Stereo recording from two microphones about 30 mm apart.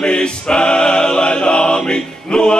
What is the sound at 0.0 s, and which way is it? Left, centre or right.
Choir, left.